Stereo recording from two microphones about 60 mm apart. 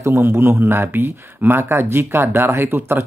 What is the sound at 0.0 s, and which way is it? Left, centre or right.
Speech, right.